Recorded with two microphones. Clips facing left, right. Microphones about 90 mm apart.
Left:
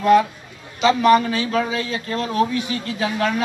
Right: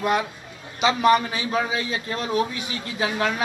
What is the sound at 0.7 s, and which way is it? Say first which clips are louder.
Speech: left 4 dB; 20° right (ahead or behind).